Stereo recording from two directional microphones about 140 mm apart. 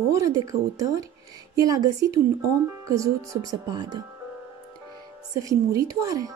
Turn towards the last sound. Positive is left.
turn(degrees=-25)  # may be behind; listen again after turning